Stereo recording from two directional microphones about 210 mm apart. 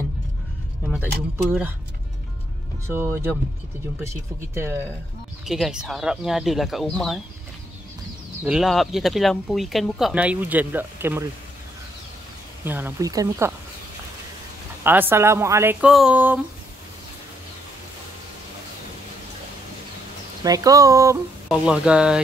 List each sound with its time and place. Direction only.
0.8 s speech: 5° right (ahead or behind)
2.9 s speech: 10° right (ahead or behind)
5.4 s speech: centre (ahead or behind)
8.5 s speech: centre (ahead or behind)
12.6 s speech: 10° right (ahead or behind)
14.8 s speech: 10° right (ahead or behind)
20.4 s speech: 15° right (ahead or behind)
21.5 s speech: 5° right (ahead or behind)